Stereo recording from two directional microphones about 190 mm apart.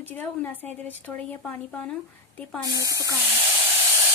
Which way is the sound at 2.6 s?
20° right (ahead or behind).